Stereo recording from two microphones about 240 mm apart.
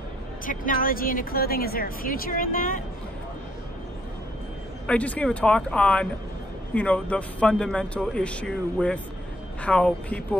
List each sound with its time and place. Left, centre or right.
0.5 s a woman's voice: left
4.8 s a man's voice: centre